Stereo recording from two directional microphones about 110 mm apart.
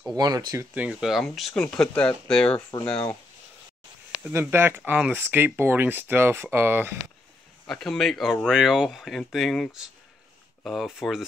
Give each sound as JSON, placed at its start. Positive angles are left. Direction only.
{"t": 0.1, "sound": "speech", "side_deg": -35}
{"t": 0.7, "sound": "speech", "side_deg": -5}
{"t": 4.3, "sound": "speech", "side_deg": -20}
{"t": 7.6, "sound": "speech", "side_deg": 5}